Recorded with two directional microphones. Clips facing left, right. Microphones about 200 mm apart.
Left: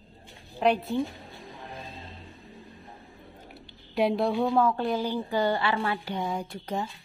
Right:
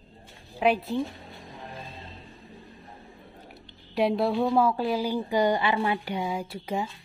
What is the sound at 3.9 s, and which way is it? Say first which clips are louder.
A woman's voice: right 1 dB; centre (ahead or behind).